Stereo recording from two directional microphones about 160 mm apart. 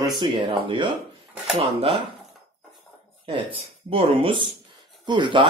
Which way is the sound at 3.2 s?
35° right (ahead or behind).